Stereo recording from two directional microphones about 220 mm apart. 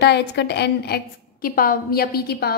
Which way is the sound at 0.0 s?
50° left (ahead or behind).